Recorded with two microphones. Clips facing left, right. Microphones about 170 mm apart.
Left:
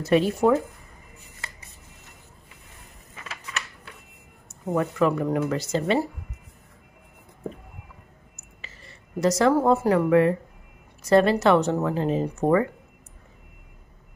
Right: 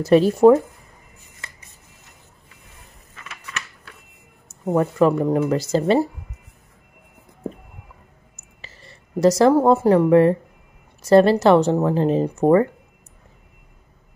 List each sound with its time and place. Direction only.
0.0 s speech: 35° right (ahead or behind)
4.6 s speech: 35° right (ahead or behind)
8.5 s speech: 35° right (ahead or behind)